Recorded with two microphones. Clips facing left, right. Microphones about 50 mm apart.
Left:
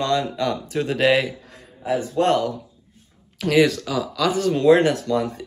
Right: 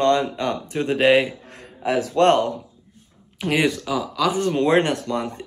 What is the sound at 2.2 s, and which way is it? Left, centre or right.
Speech, right.